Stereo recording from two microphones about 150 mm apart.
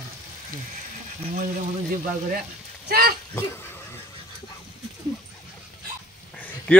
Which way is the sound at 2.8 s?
90° right.